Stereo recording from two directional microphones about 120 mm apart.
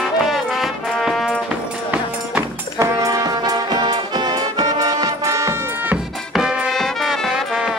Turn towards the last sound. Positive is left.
turn(degrees=-5)  # may be behind; listen again after turning